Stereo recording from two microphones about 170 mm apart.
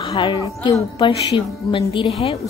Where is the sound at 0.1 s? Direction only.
25° left (ahead or behind).